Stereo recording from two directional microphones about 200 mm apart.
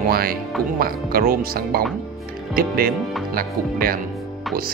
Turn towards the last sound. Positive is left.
turn(degrees=-45)  # may be behind; listen again after turning